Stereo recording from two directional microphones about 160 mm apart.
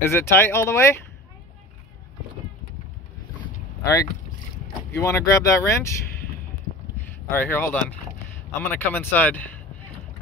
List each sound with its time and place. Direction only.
0.0 s speech: 15° left (ahead or behind)
3.8 s speech: 20° left (ahead or behind)
7.0 s speech: 15° left (ahead or behind)